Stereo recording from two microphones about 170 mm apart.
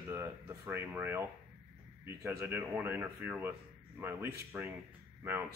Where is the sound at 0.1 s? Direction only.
15° right (ahead or behind).